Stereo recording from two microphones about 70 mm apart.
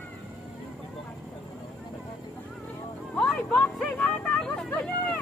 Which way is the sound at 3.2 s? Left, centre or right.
Centre.